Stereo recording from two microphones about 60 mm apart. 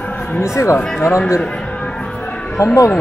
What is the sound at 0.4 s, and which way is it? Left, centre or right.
Speech, left.